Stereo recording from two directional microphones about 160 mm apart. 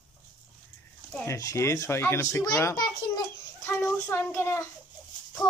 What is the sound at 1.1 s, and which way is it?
A child's voice, 15° left (ahead or behind).